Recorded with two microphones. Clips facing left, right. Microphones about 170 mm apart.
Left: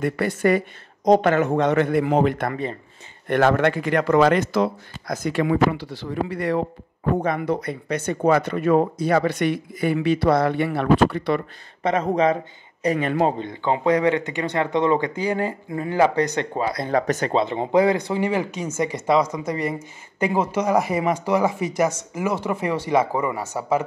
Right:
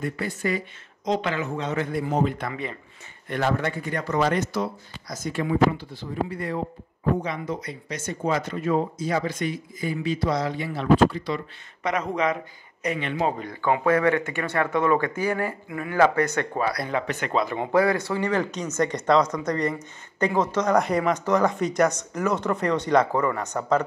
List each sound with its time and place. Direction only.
0.0 s speech: 65° left (ahead or behind)
1.7 s speech: 75° left (ahead or behind)
2.5 s speech: 35° left (ahead or behind)
3.3 s speech: 75° left (ahead or behind)
5.0 s speech: 65° left (ahead or behind)
7.2 s speech: 60° left (ahead or behind)
11.8 s speech: 30° left (ahead or behind)
12.8 s speech: 40° left (ahead or behind)
13.4 s speech: 25° left (ahead or behind)
16.9 s speech: 40° left (ahead or behind); by 23.8 s 5° left (ahead or behind)